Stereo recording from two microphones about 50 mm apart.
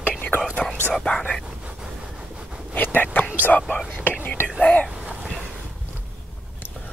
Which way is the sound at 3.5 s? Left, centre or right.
Left.